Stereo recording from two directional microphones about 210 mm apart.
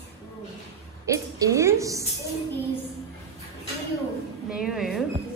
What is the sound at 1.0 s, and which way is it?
A woman's voice, 15° right (ahead or behind).